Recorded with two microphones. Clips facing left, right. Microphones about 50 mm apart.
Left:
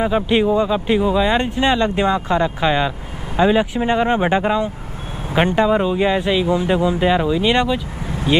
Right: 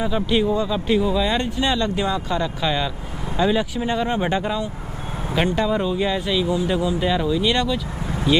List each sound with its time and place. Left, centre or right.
0.0 s speech: left
6.7 s speech: left